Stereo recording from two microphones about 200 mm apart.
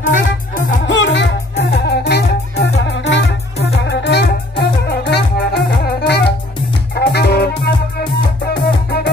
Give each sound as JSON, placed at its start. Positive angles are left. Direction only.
{"t": 0.0, "sound": "music", "side_deg": 40}
{"t": 0.8, "sound": "music", "side_deg": 65}